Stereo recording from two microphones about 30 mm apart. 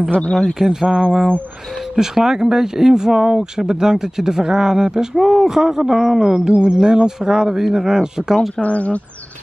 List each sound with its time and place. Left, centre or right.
0.4 s speech: centre
8.4 s speech: left